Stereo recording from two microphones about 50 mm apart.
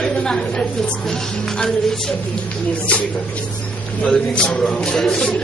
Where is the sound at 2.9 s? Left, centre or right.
Left.